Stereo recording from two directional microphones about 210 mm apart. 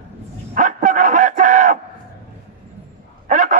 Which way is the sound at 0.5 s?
35° right (ahead or behind).